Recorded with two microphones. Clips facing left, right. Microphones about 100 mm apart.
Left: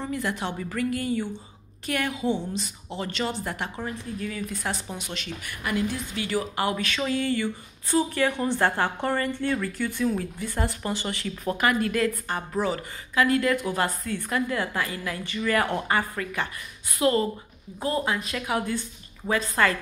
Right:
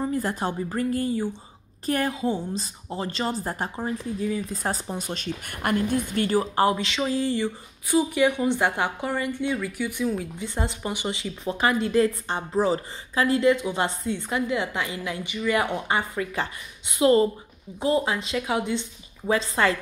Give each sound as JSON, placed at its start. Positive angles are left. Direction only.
{"t": 0.1, "sound": "a woman's voice", "side_deg": -40}
{"t": 0.6, "sound": "a woman's voice", "side_deg": -30}
{"t": 3.7, "sound": "speech", "side_deg": -20}
{"t": 4.6, "sound": "a woman's voice", "side_deg": -35}
{"t": 7.9, "sound": "a woman's voice", "side_deg": -15}